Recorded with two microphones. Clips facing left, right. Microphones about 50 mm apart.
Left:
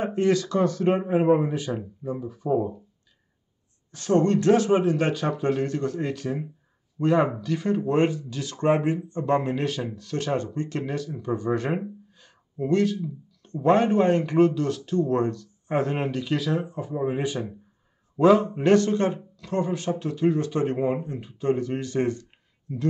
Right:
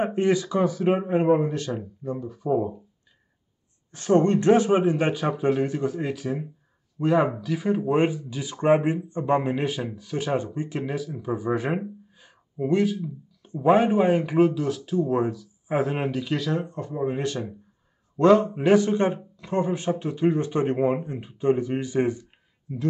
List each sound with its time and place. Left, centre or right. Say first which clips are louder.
0.0 s speech: even; right; by 2.7 s centre
3.9 s speech: right 1 dB; right; by 17.5 s centre
18.1 s a man's voice: right 1 dB; centre